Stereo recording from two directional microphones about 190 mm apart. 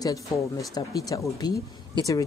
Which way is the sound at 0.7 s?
20° left (ahead or behind).